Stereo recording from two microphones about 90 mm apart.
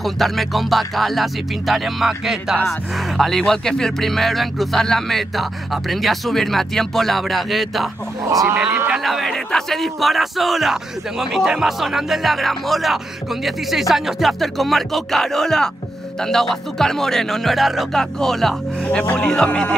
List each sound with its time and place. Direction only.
0.0 s speech: centre (ahead or behind)
8.3 s speech: 40° right (ahead or behind)
8.9 s speech: centre (ahead or behind)